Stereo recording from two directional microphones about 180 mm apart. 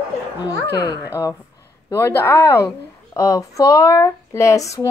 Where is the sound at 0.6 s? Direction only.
65° left (ahead or behind).